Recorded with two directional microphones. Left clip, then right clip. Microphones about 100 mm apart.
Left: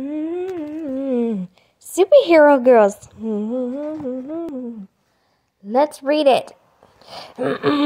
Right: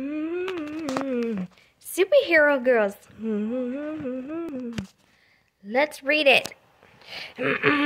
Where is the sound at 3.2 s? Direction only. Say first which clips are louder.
Left 5 dB; 35° left (ahead or behind).